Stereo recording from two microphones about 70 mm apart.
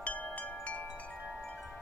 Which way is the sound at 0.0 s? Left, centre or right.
Left.